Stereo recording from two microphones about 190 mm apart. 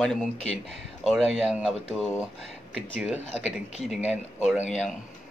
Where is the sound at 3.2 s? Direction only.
35° left (ahead or behind).